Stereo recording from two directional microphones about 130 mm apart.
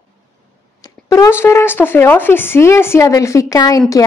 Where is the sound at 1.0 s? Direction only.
25° left (ahead or behind).